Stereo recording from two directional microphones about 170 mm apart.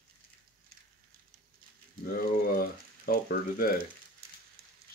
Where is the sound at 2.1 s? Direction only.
60° left (ahead or behind).